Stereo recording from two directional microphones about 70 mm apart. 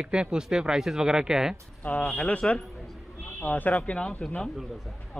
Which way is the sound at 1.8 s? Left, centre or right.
Left.